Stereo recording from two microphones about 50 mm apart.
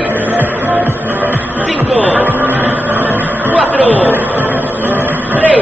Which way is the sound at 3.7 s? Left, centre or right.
Right.